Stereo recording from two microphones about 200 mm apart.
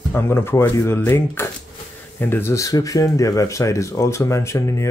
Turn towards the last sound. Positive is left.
turn(degrees=15)  # may be behind; listen again after turning